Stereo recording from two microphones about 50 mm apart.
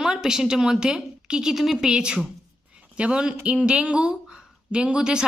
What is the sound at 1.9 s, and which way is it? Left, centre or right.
Speech, centre.